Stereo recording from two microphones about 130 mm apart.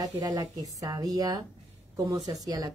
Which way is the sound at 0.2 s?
25° right (ahead or behind).